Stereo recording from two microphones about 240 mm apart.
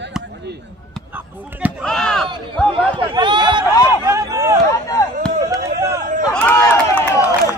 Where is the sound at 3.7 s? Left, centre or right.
Centre.